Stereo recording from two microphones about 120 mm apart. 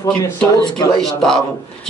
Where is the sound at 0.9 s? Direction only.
5° left (ahead or behind).